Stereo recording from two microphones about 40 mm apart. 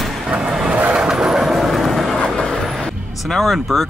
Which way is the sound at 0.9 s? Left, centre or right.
Right.